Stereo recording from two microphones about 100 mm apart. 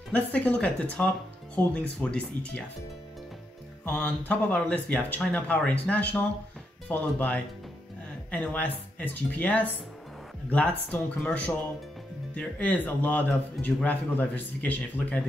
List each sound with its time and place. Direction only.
0.1 s a man's voice: 15° left (ahead or behind)
4.0 s a man's voice: 15° left (ahead or behind)